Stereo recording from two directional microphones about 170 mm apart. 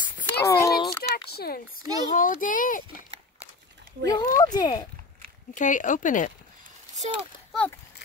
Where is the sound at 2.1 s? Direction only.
50° left (ahead or behind).